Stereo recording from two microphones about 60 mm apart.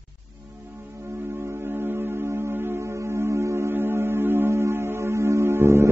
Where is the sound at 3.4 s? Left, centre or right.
Right.